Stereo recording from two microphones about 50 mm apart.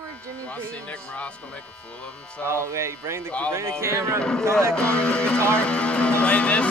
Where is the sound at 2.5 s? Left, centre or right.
Right.